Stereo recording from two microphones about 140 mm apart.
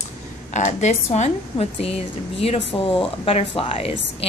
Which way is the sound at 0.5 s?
55° left (ahead or behind).